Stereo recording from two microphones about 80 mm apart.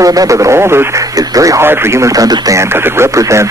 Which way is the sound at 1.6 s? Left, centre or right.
Right.